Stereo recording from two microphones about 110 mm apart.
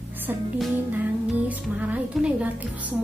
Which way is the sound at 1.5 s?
15° right (ahead or behind).